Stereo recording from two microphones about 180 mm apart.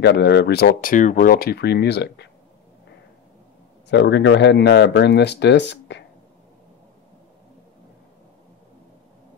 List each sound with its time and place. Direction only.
0.0 s speech: 70° left (ahead or behind)
3.9 s speech: 75° left (ahead or behind)